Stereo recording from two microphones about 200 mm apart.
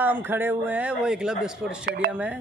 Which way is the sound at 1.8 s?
55° right (ahead or behind).